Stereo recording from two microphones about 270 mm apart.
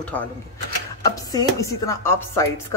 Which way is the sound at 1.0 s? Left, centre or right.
Centre.